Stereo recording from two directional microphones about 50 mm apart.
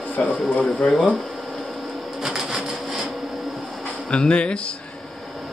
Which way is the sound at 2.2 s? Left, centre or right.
Centre.